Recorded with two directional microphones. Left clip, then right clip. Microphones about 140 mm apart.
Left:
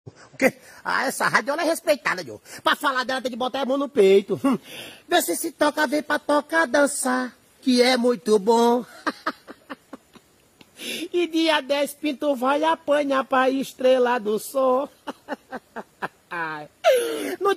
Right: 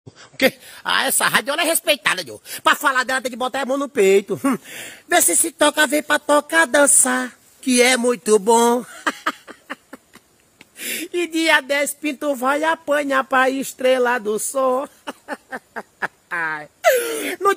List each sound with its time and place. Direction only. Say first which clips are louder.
0.4 s speech: right 3 dB; 10° right (ahead or behind)
5.4 s music: right 5 dB; 20° right (ahead or behind)
10.8 s speech: right 1 dB; centre (ahead or behind)